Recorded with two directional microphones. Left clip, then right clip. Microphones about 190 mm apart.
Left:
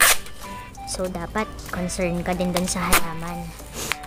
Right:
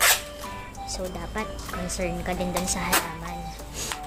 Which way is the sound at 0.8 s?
35° left (ahead or behind).